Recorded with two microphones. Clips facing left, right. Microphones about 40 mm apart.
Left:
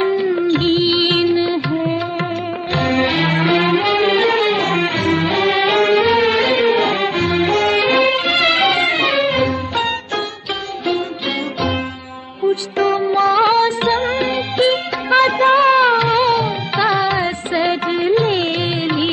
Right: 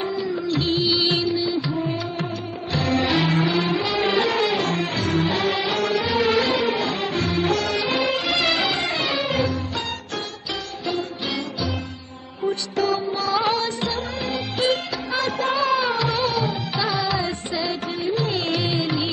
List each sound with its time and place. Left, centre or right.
0.0 s music: left
12.4 s music: left